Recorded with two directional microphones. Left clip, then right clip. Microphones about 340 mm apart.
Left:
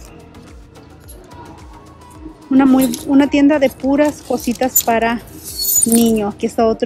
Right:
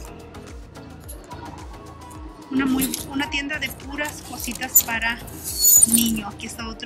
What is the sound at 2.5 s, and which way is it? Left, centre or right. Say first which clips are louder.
Speech: left 11 dB; centre.